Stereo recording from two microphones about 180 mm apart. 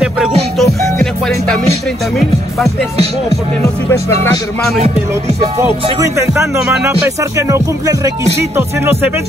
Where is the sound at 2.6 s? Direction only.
35° right (ahead or behind).